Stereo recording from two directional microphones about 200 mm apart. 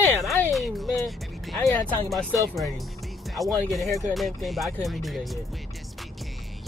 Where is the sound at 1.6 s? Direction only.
15° left (ahead or behind).